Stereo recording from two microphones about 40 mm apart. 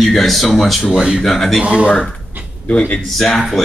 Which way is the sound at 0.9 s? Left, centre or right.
Right.